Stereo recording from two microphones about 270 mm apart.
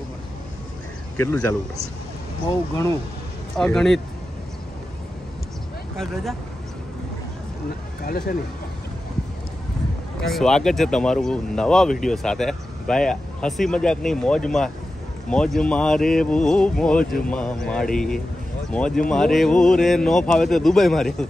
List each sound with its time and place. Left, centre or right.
1.2 s speech: centre
2.7 s speech: centre
8.0 s speech: left
10.2 s speech: centre